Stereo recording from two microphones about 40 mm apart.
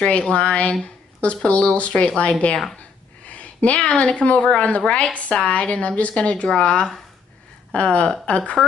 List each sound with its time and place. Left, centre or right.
0.1 s a woman's voice: left